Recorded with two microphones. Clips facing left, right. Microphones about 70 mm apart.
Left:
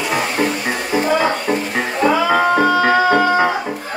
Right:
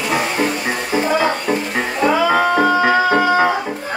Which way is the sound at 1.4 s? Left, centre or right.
Centre.